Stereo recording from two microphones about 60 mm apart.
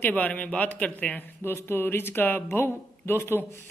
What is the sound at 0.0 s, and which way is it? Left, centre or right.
A man's voice, left.